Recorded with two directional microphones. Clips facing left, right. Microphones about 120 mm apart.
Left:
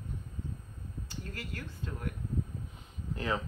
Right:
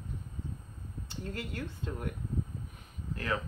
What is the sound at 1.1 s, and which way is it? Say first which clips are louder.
A woman's voice: right 4 dB; 25° right (ahead or behind).